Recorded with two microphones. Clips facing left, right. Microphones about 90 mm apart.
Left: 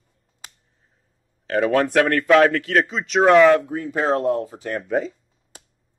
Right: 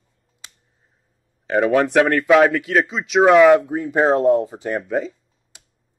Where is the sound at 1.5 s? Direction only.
10° right (ahead or behind).